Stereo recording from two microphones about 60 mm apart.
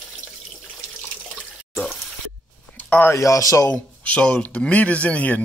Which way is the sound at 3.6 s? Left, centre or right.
Left.